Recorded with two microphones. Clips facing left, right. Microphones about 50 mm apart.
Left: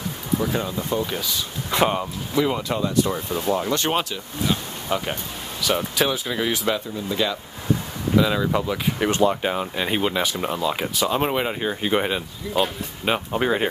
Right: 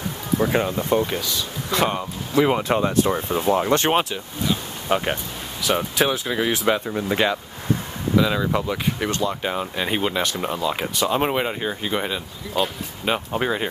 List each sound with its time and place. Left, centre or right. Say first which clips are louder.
0.4 s speech: right 8 dB; right
1.1 s speech: right 1 dB; centre
2.3 s speech: right 4 dB; right
4.8 s speech: right 4 dB; right
5.6 s speech: right 1 dB; centre
7.0 s speech: right 3 dB; right
8.2 s speech: even; centre
11.8 s speech: left 3 dB; centre